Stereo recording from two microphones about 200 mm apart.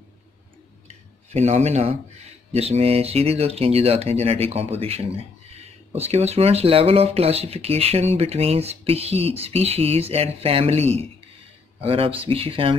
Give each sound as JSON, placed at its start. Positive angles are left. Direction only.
{"t": 1.3, "sound": "speech", "side_deg": -35}